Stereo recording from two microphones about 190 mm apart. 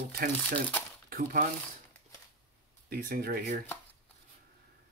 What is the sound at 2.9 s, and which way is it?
Speech, 50° right (ahead or behind).